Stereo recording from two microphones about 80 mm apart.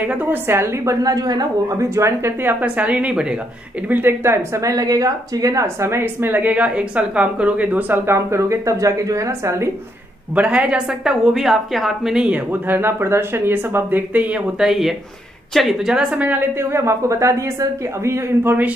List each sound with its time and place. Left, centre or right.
0.0 s speech: right
1.0 s a woman's voice: right
2.6 s a woman's voice: centre
3.9 s speech: right
4.6 s speech: right
10.3 s a woman's voice: centre
12.6 s speech: right
14.6 s a woman's voice: centre
16.5 s speech: right